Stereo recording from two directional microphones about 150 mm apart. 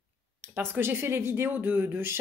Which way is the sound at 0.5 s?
15° right (ahead or behind).